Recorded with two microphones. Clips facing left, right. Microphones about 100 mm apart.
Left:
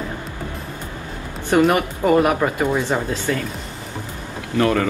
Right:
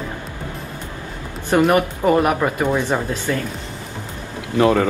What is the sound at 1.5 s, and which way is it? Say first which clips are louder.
Speech: right 1 dB; 20° right (ahead or behind).